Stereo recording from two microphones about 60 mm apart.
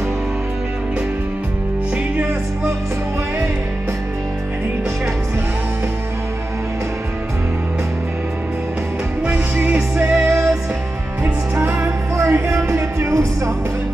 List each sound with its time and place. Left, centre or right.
9.2 s music: centre
10.2 s music: right
11.8 s music: right